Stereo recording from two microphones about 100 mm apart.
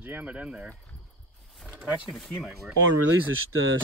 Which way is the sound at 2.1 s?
Centre (ahead or behind).